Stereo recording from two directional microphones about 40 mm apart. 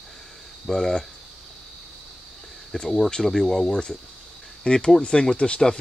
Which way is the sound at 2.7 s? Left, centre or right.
Centre.